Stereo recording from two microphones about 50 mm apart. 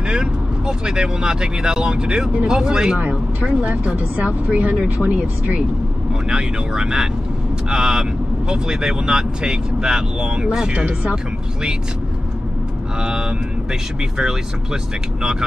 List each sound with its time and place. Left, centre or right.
0.0 s speech: centre
3.0 s speech: right
6.2 s speech: centre
13.0 s speech: centre